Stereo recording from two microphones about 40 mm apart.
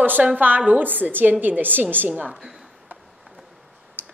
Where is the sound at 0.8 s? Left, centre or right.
Right.